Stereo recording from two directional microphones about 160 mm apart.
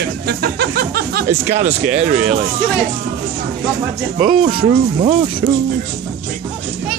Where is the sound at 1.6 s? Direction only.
40° right (ahead or behind).